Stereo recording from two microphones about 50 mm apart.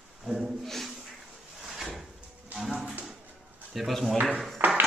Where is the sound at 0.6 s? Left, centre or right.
Centre.